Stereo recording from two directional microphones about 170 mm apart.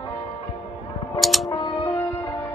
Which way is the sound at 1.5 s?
25° left (ahead or behind).